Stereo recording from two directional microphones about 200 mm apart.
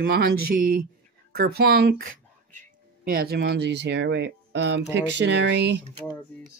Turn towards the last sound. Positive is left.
turn(degrees=-60)  # may be behind; listen again after turning